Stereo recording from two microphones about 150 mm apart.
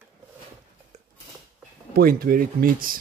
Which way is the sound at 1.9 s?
80° right.